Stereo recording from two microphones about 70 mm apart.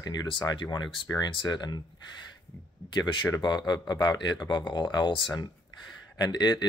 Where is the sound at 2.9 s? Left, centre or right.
Left.